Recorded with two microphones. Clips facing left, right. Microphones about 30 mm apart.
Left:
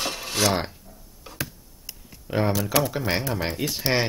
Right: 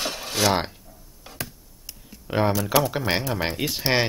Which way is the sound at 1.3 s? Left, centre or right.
Centre.